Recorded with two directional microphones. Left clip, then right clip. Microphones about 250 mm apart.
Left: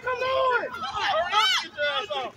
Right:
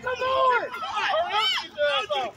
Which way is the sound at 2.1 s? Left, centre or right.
Left.